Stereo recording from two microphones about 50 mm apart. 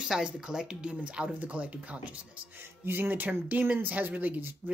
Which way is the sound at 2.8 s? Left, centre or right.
Right.